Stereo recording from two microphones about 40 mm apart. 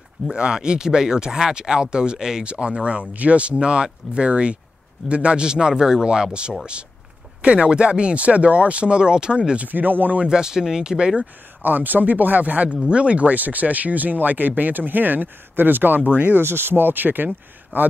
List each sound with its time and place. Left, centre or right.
0.3 s speech: right
2.4 s speech: right
9.7 s speech: right
10.2 s speech: centre
11.6 s speech: right
12.8 s speech: right
16.1 s speech: right
16.3 s speech: right